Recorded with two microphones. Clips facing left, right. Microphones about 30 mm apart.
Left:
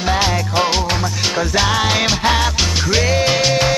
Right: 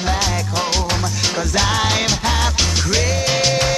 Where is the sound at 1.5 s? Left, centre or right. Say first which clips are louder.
Left 1 dB; centre.